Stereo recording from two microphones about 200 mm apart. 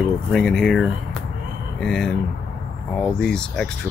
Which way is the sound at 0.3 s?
Centre (ahead or behind).